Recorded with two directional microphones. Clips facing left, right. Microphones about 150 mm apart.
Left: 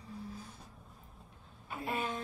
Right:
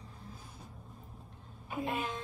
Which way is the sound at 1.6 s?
15° right (ahead or behind).